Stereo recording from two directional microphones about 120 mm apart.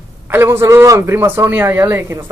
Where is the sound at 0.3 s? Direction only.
20° right (ahead or behind).